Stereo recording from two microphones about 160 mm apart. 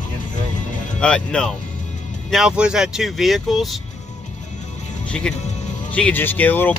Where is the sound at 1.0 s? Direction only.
5° left (ahead or behind).